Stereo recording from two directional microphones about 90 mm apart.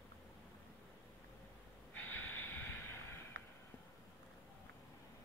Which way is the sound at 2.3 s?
25° left (ahead or behind).